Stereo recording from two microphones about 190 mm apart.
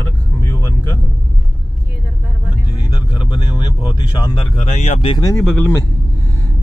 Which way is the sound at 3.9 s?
25° left (ahead or behind).